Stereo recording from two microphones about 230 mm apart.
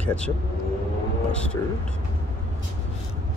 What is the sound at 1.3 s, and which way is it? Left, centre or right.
Speech, centre.